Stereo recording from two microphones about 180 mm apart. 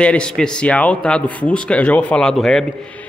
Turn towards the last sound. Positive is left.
turn(degrees=5)  # may be behind; listen again after turning